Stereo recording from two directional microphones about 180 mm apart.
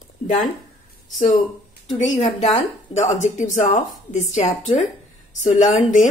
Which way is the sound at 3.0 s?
40° left (ahead or behind).